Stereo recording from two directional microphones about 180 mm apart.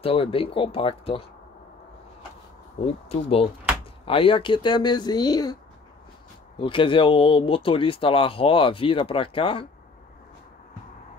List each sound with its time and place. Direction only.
0.0 s speech: 30° left (ahead or behind)
3.1 s speech: 30° left (ahead or behind)
6.6 s speech: 30° left (ahead or behind)